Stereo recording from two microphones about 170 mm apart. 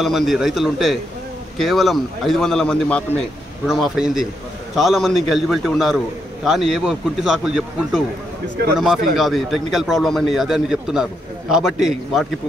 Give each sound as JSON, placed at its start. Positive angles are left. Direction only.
{"t": 0.0, "sound": "a man's voice", "side_deg": 0}